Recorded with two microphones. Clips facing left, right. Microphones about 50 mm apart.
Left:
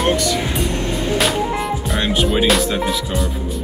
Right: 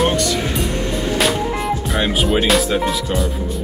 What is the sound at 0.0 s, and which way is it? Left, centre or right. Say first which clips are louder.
Music: even; centre.